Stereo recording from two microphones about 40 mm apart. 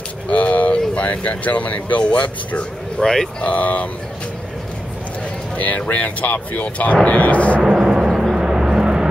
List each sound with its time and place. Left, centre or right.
0.3 s speech: left
3.0 s speech: centre
3.3 s speech: left
5.9 s speech: left
7.6 s a sound: centre
8.1 s vehicle: centre